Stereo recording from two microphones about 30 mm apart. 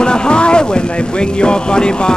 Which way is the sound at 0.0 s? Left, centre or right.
Left.